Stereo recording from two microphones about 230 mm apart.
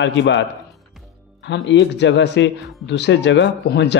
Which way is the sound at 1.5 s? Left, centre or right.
Left.